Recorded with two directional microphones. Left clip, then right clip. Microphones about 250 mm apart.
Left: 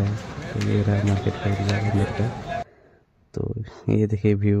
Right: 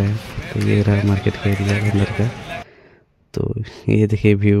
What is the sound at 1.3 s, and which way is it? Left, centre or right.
Speech, right.